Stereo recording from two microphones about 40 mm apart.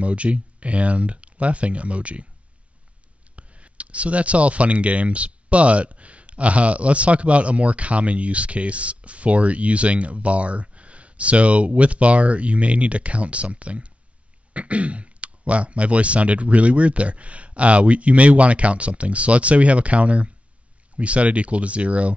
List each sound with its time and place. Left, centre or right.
0.0 s speech: right
3.3 s speech: right